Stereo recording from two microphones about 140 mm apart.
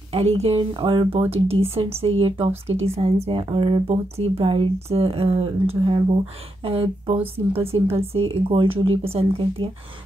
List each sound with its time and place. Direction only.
0.1 s speech: 45° right (ahead or behind)
0.7 s speech: 35° right (ahead or behind)
1.3 s speech: 45° right (ahead or behind)